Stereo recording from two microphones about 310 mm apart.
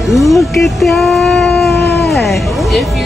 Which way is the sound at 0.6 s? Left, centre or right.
Centre.